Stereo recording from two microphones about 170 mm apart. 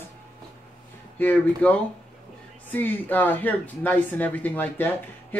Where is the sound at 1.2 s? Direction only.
10° left (ahead or behind).